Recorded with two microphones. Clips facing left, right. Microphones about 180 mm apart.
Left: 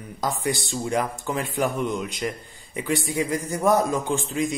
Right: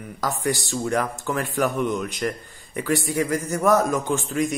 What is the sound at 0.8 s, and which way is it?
Speech, 10° left (ahead or behind).